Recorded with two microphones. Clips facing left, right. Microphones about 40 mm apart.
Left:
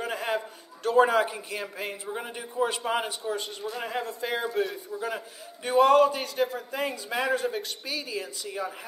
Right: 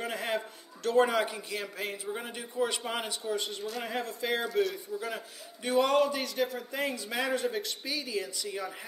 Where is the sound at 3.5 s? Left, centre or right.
Left.